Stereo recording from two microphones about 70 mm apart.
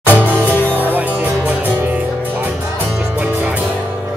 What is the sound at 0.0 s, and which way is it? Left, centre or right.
Music, right.